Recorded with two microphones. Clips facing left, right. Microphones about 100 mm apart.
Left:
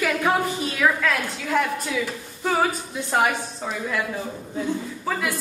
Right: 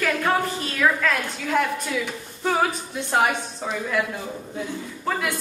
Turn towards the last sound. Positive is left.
turn(degrees=0)  # may be behind; listen again after turning